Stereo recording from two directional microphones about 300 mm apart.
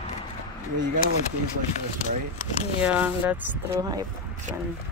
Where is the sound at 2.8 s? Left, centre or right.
Centre.